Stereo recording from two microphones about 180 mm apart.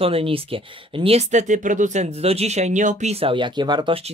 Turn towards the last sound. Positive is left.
turn(degrees=-30)  # may be behind; listen again after turning